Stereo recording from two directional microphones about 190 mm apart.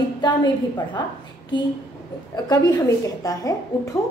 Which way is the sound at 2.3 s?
20° left (ahead or behind).